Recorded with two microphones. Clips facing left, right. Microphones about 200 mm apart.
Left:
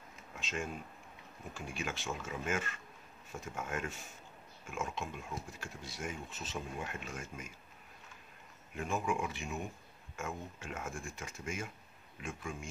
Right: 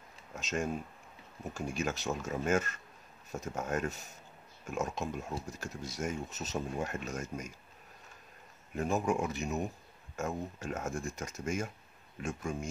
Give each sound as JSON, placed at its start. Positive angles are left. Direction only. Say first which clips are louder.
{"t": 0.3, "sound": "speech", "louder": "right 6 dB", "side_deg": -40}
{"t": 8.7, "sound": "speech", "louder": "right 5 dB", "side_deg": -40}